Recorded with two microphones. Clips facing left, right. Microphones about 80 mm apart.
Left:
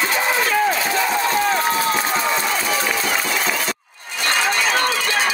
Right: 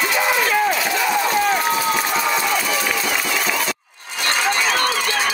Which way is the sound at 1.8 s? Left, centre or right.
Left.